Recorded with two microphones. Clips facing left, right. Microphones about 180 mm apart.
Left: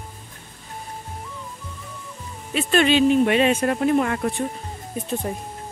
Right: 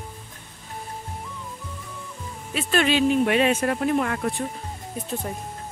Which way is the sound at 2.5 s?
Centre (ahead or behind).